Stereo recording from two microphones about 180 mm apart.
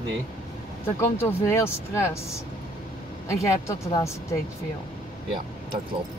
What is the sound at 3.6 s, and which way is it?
Speech, 15° left (ahead or behind).